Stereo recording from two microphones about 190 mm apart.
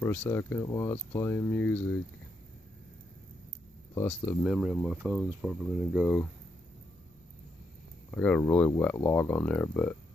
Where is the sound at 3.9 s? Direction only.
10° left (ahead or behind).